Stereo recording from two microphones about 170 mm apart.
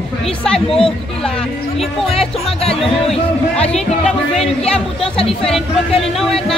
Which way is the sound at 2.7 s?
5° left (ahead or behind).